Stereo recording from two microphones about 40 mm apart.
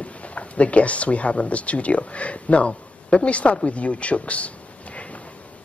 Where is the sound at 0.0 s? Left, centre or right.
Left.